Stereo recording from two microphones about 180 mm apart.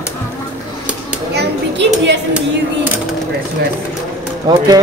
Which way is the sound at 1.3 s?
70° right (ahead or behind).